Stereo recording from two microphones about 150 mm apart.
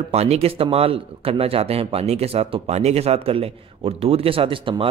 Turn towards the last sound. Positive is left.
turn(degrees=-35)  # may be behind; listen again after turning